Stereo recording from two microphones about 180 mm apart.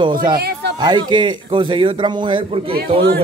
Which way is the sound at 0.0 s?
25° right (ahead or behind).